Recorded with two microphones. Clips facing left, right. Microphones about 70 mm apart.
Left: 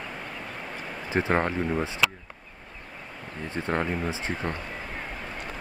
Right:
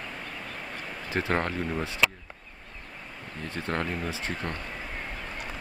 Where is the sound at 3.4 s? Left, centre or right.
Left.